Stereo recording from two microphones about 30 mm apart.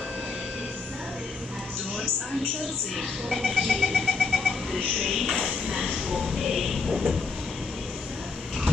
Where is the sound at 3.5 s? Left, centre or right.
Centre.